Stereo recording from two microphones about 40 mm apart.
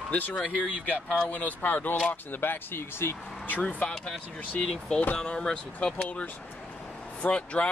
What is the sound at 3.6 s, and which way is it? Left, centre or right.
Speech, centre.